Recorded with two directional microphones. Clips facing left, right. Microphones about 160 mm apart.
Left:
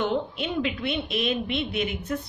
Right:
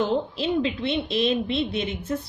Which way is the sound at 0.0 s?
30° right (ahead or behind).